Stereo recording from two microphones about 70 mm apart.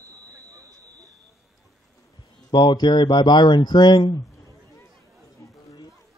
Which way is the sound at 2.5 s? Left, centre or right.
Left.